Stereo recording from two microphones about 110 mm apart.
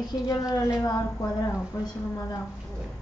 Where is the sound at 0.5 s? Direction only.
30° left (ahead or behind).